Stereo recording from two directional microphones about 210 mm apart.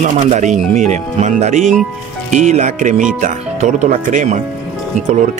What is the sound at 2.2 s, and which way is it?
Speech, 35° right (ahead or behind).